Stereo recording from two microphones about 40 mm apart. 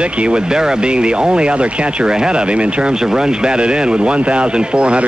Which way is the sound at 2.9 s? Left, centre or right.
Centre.